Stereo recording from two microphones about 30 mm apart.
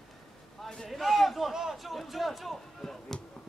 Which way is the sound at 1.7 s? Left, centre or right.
Centre.